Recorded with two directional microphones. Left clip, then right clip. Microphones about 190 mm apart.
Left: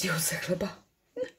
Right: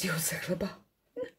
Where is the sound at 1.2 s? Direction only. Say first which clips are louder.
Left 3 dB; 5° right (ahead or behind).